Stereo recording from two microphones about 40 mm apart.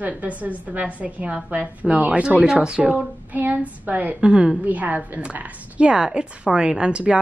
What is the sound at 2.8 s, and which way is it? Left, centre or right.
A woman's voice, right.